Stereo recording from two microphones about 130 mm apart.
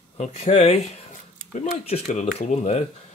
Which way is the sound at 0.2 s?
55° left (ahead or behind).